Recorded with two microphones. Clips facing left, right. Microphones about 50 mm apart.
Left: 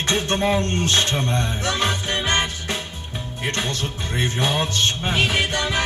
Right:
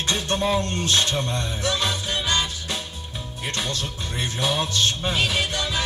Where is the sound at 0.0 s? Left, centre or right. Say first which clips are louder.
Left 3 dB; left.